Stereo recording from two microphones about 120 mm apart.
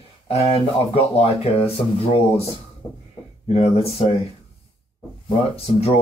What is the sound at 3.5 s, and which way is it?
Speech, 60° left (ahead or behind).